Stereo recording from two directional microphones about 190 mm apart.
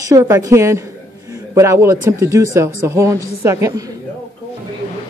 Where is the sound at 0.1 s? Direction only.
15° right (ahead or behind).